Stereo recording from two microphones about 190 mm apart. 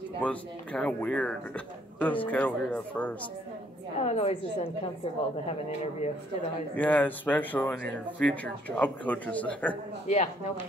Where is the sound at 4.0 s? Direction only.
30° left (ahead or behind).